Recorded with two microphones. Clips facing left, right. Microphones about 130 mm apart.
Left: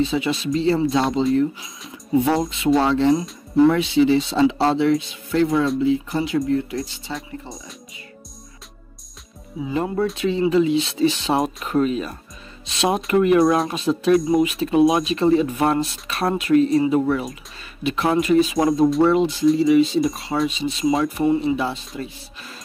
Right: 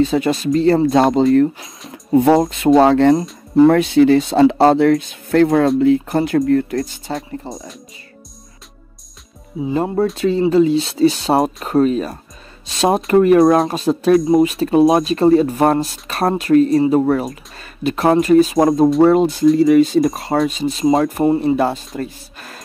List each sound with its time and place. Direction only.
0.0 s speech: 45° right (ahead or behind)
1.9 s music: 50° right (ahead or behind)
2.5 s speech: 50° right (ahead or behind)
3.5 s speech: 45° right (ahead or behind)
7.2 s speech: centre (ahead or behind)
9.7 s speech: 35° right (ahead or behind)